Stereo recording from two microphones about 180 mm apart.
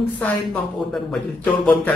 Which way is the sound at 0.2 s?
5° left (ahead or behind).